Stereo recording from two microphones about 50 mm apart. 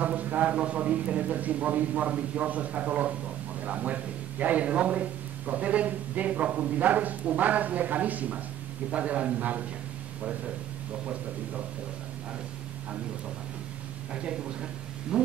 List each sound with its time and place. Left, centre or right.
0.0 s a man's voice: right
14.1 s a man's voice: centre